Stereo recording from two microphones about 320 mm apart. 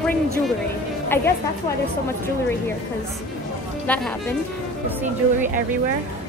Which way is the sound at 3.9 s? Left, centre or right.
Centre.